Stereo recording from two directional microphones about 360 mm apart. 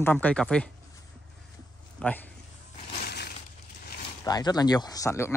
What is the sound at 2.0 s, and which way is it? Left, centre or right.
Speech, centre.